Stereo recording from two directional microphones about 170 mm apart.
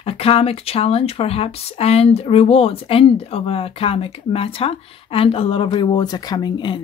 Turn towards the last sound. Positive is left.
turn(degrees=25)  # may be behind; listen again after turning